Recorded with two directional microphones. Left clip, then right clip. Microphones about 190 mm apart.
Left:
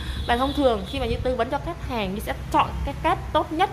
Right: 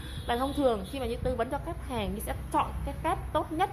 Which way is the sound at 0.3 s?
Centre (ahead or behind).